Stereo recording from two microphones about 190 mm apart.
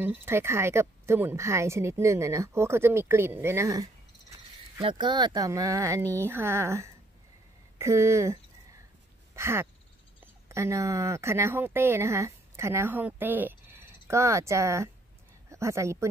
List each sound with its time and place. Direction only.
0.0 s a woman's voice: 10° right (ahead or behind)
9.3 s a sound: 15° right (ahead or behind)
10.2 s speech: 15° right (ahead or behind)